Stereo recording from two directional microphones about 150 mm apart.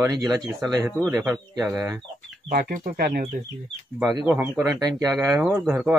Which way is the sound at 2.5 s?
90° right.